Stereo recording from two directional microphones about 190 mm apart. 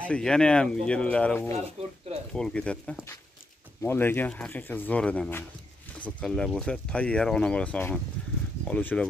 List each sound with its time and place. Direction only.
0.0 s speech: 5° left (ahead or behind)
1.8 s speech: 35° right (ahead or behind)
2.3 s speech: 5° left (ahead or behind)